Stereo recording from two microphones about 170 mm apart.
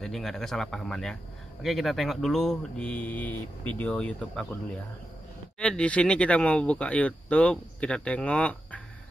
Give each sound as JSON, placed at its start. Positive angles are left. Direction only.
{"t": 0.0, "sound": "speech", "side_deg": 0}
{"t": 5.6, "sound": "speech", "side_deg": 5}